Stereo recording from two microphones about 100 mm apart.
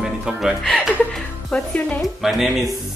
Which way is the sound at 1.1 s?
10° left (ahead or behind).